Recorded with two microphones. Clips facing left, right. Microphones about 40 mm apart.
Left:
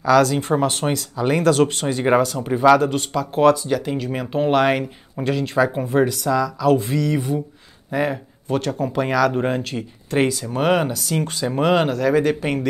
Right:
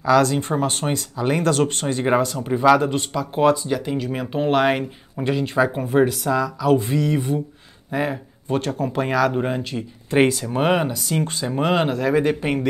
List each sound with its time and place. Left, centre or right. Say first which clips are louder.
0.0 s speech: left 1 dB; centre
6.6 s speech: right 1 dB; centre
9.3 s speech: left 2 dB; centre
10.4 s speech: left 1 dB; centre
10.8 s speech: left 1 dB; centre